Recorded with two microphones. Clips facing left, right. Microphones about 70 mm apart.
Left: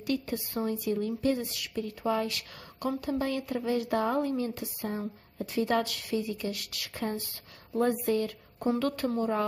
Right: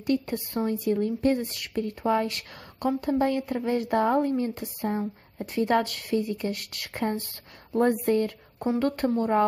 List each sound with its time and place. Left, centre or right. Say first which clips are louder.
0.0 s speech: right 5 dB; right
8.5 s speech: right 3 dB; right